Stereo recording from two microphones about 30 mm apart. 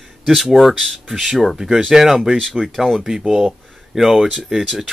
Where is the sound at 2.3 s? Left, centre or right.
Centre.